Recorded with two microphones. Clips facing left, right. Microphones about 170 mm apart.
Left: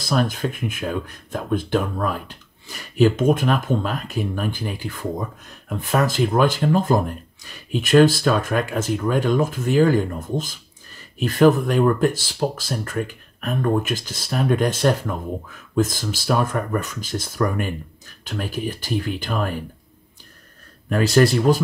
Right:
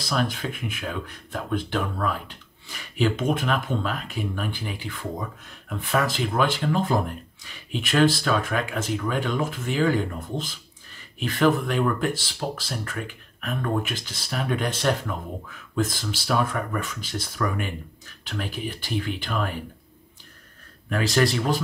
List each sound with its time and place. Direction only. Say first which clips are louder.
0.1 s speech: left 5 dB; 40° left (ahead or behind)
20.9 s speech: left 6 dB; 45° left (ahead or behind)